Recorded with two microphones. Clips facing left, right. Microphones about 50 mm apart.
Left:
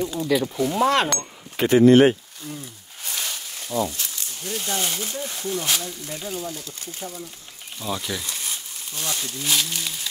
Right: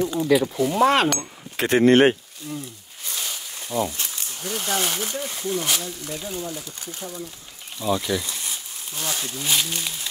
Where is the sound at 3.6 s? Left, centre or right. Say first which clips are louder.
Even; centre.